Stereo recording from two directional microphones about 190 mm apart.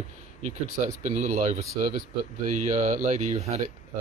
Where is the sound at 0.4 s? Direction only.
35° right (ahead or behind).